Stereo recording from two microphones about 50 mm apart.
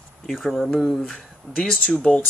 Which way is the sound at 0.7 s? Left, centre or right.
Centre.